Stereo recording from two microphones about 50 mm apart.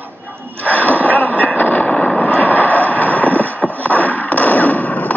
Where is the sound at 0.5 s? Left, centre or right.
Left.